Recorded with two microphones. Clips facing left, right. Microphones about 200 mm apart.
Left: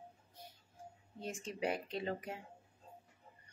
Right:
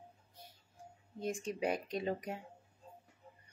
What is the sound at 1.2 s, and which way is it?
Speech, 15° right (ahead or behind).